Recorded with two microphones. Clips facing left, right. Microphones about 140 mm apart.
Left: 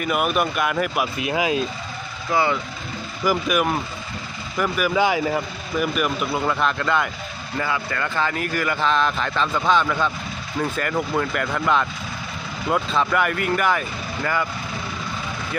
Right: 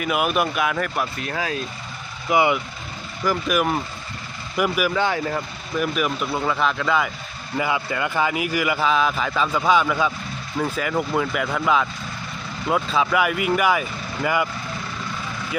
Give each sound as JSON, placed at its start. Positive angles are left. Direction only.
{"t": 0.0, "sound": "speech", "side_deg": 0}
{"t": 2.2, "sound": "speech", "side_deg": -15}
{"t": 3.3, "sound": "speech", "side_deg": 0}
{"t": 4.9, "sound": "speech", "side_deg": 10}
{"t": 7.5, "sound": "speech", "side_deg": -15}